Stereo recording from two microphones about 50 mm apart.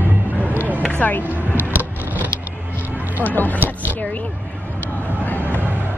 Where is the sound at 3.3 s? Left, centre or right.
Left.